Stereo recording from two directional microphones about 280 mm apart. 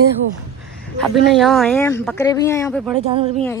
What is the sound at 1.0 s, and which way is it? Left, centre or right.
Speech, centre.